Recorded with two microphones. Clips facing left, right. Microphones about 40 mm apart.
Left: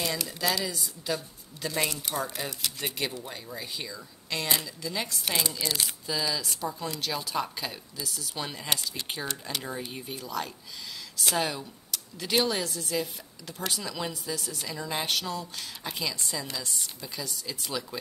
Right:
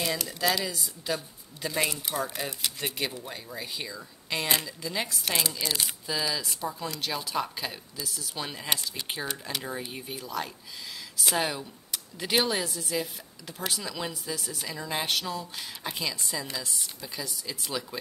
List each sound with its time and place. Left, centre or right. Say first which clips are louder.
0.0 s speech: right 1 dB; centre